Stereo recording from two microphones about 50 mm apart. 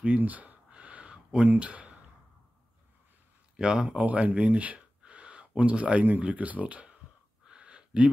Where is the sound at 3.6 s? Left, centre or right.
Right.